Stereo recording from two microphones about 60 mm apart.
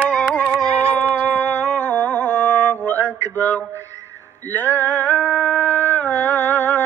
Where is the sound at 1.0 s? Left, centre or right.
Left.